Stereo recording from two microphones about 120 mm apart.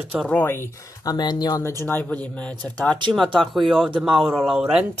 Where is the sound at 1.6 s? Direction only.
20° left (ahead or behind); by 4.9 s 5° right (ahead or behind).